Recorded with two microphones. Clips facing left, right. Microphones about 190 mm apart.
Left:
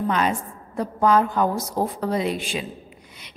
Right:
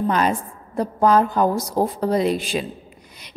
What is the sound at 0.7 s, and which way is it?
A woman's voice, 40° right (ahead or behind).